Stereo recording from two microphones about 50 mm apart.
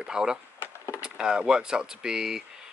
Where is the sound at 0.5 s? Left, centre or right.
Left.